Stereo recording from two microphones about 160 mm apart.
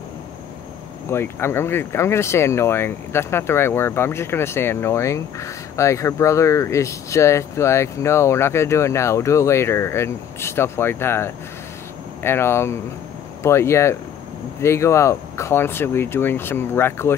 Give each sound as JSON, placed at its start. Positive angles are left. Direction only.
{"t": 1.0, "sound": "speech", "side_deg": 15}